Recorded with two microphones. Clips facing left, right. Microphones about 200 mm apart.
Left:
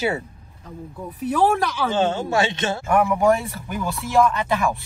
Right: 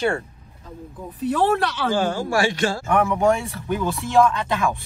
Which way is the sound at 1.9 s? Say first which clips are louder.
Left 2 dB; 25° left (ahead or behind).